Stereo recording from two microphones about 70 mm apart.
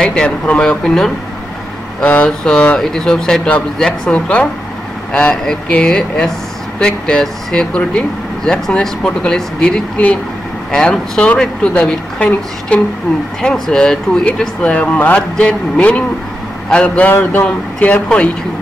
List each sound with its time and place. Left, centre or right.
0.0 s speech: centre
3.4 s speech: centre